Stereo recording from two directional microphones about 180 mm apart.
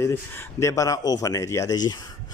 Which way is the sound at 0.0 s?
15° left (ahead or behind).